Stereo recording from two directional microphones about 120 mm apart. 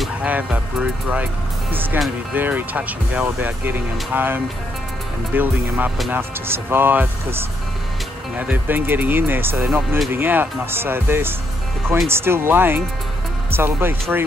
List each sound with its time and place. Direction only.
0.2 s speech: 10° right (ahead or behind)
9.7 s speech: 5° right (ahead or behind)
10.1 s speech: 15° right (ahead or behind)